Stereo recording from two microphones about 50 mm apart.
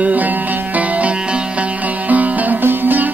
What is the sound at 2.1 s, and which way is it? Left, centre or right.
Music, right.